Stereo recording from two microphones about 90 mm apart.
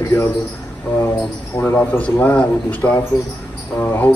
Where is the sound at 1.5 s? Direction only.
20° left (ahead or behind).